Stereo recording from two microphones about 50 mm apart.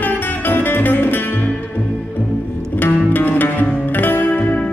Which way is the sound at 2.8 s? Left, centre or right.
Left.